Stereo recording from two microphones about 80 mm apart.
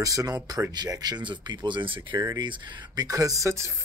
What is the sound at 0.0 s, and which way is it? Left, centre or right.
Speech, right.